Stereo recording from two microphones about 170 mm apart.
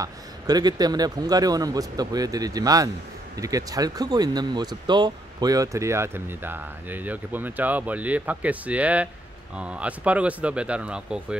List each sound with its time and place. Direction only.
0.0 s a man's voice: 25° right (ahead or behind); by 11.3 s 5° right (ahead or behind)